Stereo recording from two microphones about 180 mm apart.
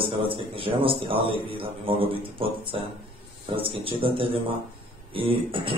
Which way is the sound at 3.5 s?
30° right (ahead or behind).